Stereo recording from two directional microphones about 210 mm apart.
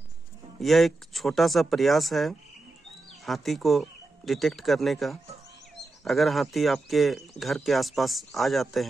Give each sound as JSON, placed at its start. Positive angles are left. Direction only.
{"t": 0.6, "sound": "speech", "side_deg": 0}